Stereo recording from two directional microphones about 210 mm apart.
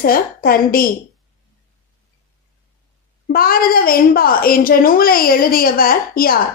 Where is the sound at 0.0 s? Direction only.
45° left (ahead or behind).